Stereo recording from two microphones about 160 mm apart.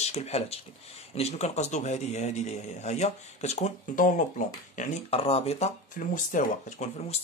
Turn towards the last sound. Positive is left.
turn(degrees=45)  # may be behind; listen again after turning